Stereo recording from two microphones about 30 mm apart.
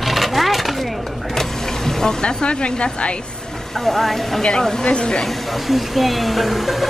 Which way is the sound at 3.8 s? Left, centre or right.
Centre.